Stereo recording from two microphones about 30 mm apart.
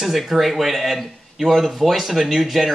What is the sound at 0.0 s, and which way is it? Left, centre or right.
Speech, centre.